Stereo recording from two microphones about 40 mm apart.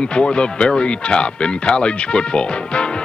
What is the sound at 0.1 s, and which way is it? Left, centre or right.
Speech, left.